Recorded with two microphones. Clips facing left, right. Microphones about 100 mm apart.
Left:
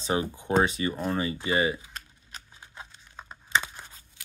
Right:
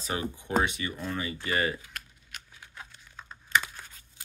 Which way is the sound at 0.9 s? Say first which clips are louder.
Left 5 dB; 30° left (ahead or behind).